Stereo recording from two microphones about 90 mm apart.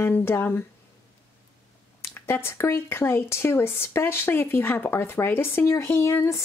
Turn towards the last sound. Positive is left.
turn(degrees=30)  # may be behind; listen again after turning